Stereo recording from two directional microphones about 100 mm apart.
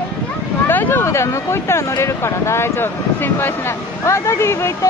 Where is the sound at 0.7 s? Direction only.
20° left (ahead or behind).